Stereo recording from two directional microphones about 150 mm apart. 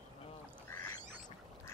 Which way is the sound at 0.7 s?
20° left (ahead or behind).